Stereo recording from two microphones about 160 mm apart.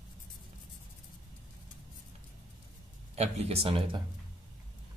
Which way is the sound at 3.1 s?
40° right (ahead or behind).